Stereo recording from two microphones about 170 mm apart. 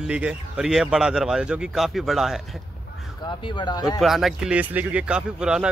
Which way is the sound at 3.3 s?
30° left (ahead or behind).